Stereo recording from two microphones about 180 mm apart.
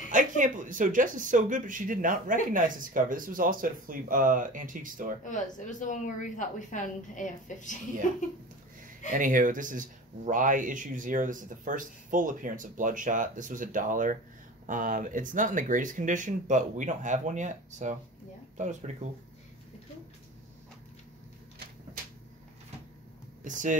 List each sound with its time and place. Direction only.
0.1 s speech: 45° right (ahead or behind)
5.2 s speech: 45° left (ahead or behind)
9.1 s speech: 50° right (ahead or behind)
23.4 s speech: 45° right (ahead or behind)